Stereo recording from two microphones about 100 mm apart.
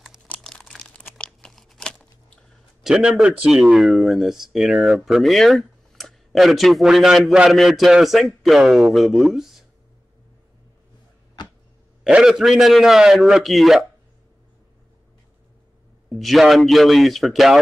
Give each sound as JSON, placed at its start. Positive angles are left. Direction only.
{"t": 0.3, "sound": "crumpling", "side_deg": 5}
{"t": 2.8, "sound": "speech", "side_deg": -5}
{"t": 11.4, "sound": "a sound", "side_deg": 45}
{"t": 12.0, "sound": "speech", "side_deg": -5}
{"t": 16.1, "sound": "speech", "side_deg": 0}